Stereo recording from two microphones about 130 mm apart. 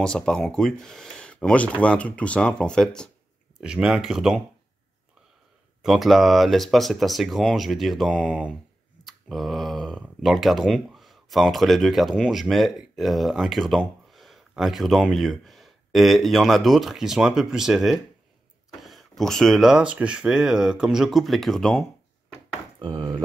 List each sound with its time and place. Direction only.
0.0 s speech: 5° left (ahead or behind)
3.5 s speech: 5° right (ahead or behind)
5.8 s speech: centre (ahead or behind)
9.0 s a sound: centre (ahead or behind)
10.0 s speech: centre (ahead or behind)
22.8 s speech: 35° right (ahead or behind)